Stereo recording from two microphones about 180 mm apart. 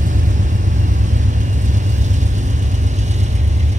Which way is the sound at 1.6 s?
40° right (ahead or behind).